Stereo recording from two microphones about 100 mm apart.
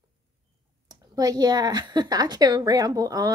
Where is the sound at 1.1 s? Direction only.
40° right (ahead or behind).